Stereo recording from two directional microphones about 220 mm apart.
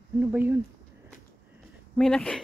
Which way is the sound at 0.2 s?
10° right (ahead or behind).